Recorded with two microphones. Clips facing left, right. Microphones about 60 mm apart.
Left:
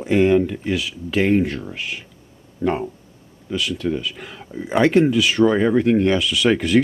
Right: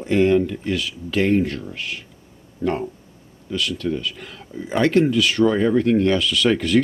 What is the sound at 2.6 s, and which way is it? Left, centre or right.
Speech, left.